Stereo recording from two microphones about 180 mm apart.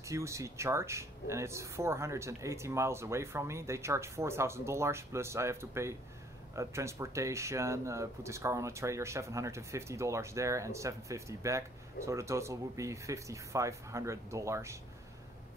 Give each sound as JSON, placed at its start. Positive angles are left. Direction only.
{"t": 0.0, "sound": "speech", "side_deg": -15}